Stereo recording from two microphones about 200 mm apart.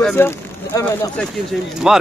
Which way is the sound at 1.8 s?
5° right (ahead or behind).